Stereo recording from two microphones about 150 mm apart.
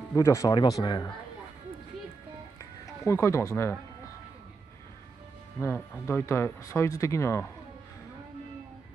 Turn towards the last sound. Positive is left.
turn(degrees=20)  # may be behind; listen again after turning